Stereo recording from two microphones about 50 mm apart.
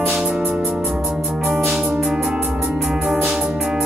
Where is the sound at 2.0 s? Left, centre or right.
Centre.